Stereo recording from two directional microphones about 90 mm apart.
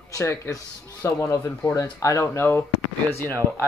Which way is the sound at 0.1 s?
35° left (ahead or behind).